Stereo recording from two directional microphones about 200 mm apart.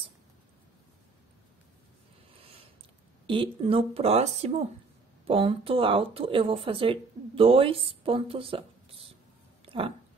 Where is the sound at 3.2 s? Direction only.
25° right (ahead or behind).